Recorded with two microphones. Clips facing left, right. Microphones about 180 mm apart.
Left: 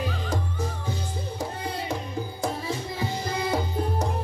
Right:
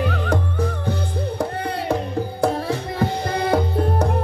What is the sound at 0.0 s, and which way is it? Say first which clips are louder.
Music: right 7 dB; 60° right (ahead or behind).